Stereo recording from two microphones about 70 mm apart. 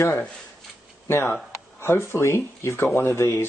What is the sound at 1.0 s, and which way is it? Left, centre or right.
Speech, left.